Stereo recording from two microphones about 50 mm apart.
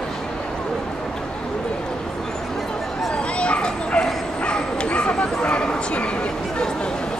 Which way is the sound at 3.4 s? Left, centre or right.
Left.